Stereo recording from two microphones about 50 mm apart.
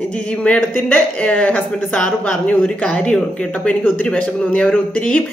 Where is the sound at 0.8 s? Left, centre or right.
Left.